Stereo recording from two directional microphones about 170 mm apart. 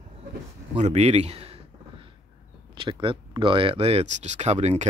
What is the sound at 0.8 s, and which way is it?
Speech, 40° right (ahead or behind).